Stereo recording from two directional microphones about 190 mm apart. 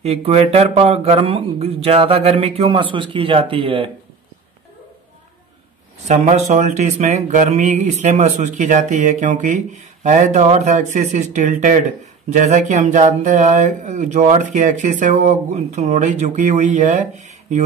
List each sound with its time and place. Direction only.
0.0 s speech: 30° right (ahead or behind)
6.0 s speech: 40° right (ahead or behind)